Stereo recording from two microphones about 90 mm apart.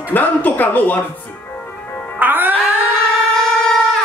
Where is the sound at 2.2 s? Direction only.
20° right (ahead or behind).